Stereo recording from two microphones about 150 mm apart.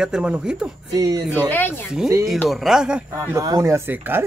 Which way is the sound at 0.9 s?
25° right (ahead or behind).